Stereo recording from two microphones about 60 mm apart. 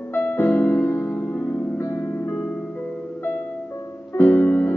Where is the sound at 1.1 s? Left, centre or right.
Left.